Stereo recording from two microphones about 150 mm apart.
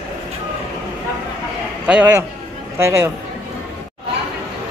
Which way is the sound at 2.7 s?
15° right (ahead or behind).